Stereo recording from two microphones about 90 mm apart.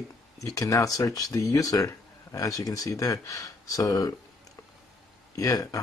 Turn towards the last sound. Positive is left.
turn(degrees=40)  # may be behind; listen again after turning